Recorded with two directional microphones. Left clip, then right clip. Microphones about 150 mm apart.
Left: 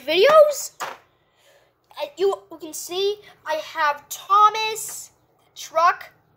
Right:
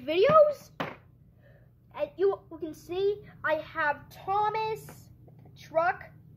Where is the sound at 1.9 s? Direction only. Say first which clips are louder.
Left 5 dB; 15° left (ahead or behind).